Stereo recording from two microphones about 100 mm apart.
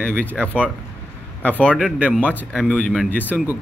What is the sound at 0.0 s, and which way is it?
Speech, 15° left (ahead or behind).